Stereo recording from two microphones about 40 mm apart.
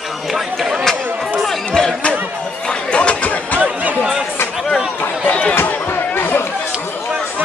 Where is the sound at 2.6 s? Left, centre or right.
Left.